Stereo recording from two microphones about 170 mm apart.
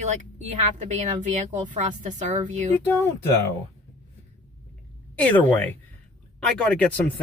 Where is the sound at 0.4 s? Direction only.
45° right (ahead or behind).